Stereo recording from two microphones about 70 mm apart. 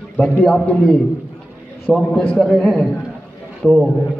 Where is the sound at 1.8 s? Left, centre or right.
Centre.